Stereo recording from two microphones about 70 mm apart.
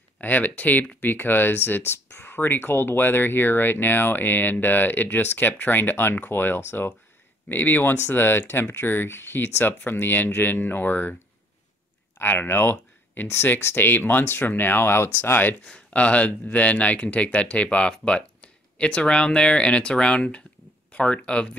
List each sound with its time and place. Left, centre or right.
0.2 s speech: left
12.2 s speech: left
15.6 s speech: centre